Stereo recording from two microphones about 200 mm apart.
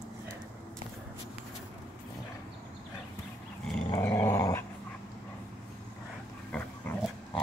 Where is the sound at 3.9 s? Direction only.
15° left (ahead or behind).